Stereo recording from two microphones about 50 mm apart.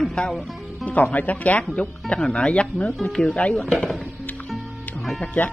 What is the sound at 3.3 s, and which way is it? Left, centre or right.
Speech, left.